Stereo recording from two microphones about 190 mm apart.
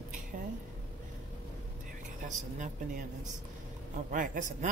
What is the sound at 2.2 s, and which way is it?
Speech, 40° right (ahead or behind).